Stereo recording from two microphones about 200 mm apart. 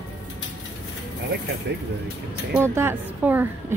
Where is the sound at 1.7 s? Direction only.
55° right (ahead or behind).